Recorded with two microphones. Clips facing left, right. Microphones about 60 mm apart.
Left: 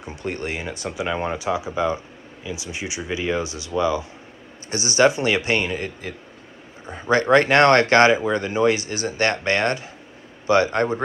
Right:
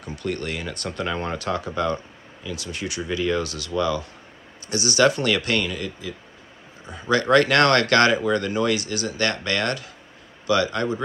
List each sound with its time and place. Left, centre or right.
0.0 s speech: left
6.9 s a man's voice: left